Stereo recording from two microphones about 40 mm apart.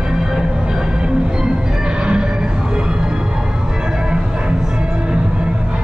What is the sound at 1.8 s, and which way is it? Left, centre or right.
Music, right.